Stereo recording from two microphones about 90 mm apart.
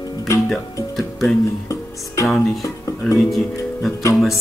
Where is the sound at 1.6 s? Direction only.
35° left (ahead or behind).